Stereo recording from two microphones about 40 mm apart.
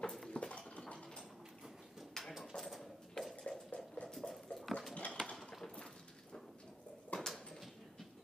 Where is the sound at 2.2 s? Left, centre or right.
Centre.